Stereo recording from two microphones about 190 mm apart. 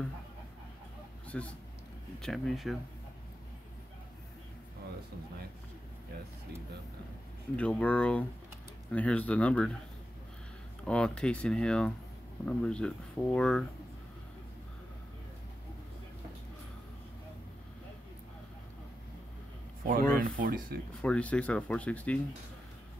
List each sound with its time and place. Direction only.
1.2 s a sound: 5° left (ahead or behind)
2.1 s speech: centre (ahead or behind)
7.5 s speech: 5° left (ahead or behind)
10.9 s speech: 5° left (ahead or behind)
19.9 s speech: 45° right (ahead or behind)
21.0 s speech: 5° left (ahead or behind)